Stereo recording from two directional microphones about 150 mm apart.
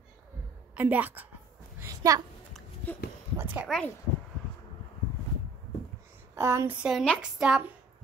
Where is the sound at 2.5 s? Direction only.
10° left (ahead or behind).